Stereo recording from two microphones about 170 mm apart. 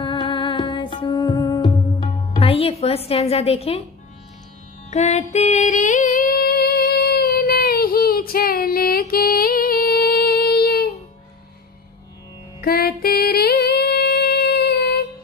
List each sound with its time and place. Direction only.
0.0 s music: 30° left (ahead or behind)
4.9 s music: 40° left (ahead or behind); by 11.0 s 65° left (ahead or behind)
12.5 s music: 65° left (ahead or behind)